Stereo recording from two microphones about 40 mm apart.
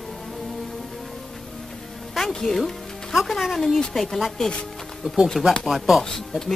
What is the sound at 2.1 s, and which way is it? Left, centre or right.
Music, centre.